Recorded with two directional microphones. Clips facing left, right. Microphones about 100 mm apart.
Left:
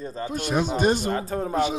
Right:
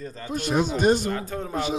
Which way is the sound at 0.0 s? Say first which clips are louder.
Left 1 dB; 30° left (ahead or behind).